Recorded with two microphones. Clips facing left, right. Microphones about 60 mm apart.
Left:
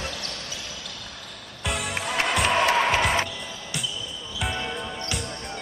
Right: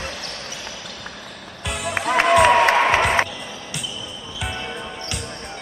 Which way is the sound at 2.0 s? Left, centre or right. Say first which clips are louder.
Right 10 dB; right.